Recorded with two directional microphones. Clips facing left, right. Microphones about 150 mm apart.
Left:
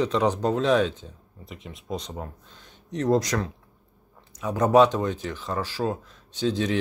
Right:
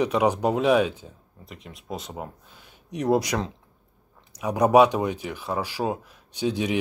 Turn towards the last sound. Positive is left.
turn(degrees=-15)  # may be behind; listen again after turning